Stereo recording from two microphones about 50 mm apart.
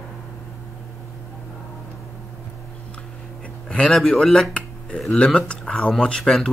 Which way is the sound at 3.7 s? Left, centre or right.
Centre.